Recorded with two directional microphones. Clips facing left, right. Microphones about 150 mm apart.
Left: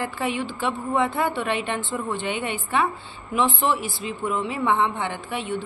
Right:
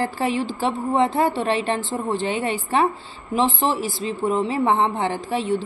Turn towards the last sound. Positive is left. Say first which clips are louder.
# right 6 dB
turn(degrees=-35)  # may be behind; listen again after turning